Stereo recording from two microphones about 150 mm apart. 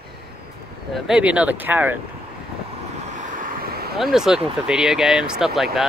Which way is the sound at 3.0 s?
60° right (ahead or behind).